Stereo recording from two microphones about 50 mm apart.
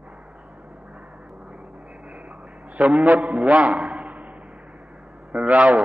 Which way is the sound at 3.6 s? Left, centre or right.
Centre.